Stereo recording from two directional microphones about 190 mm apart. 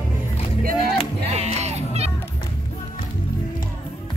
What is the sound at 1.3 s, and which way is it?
Music, 35° right (ahead or behind).